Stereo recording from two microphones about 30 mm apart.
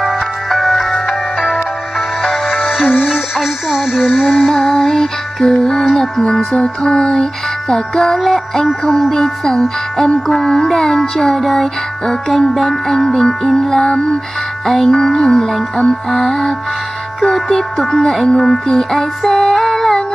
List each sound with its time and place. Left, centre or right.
0.0 s music: centre
3.3 s speech: centre
4.3 s music: centre
4.6 s music: centre
19.2 s music: centre